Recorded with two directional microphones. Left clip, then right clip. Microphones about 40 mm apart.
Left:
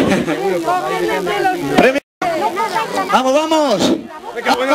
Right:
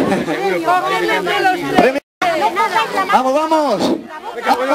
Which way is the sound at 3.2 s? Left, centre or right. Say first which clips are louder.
Left 1 dB; left.